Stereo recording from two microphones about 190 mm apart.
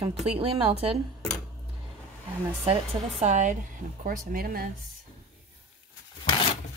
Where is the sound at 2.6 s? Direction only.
35° right (ahead or behind); by 4.7 s 50° right (ahead or behind).